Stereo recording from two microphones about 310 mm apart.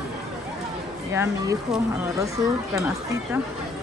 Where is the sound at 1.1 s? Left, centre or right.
Centre.